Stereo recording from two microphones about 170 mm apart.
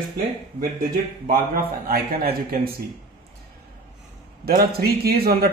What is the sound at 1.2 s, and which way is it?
Speech, 55° right (ahead or behind).